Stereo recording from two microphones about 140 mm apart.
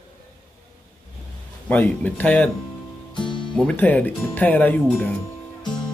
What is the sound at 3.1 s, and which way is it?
Music, 35° left (ahead or behind).